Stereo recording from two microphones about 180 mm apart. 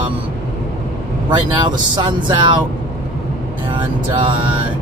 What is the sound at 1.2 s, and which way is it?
Speech, 25° right (ahead or behind).